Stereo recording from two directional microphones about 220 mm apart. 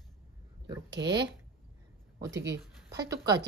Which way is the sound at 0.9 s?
50° right (ahead or behind).